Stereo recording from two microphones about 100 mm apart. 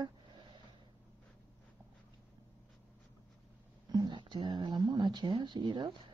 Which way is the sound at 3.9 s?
45° right (ahead or behind).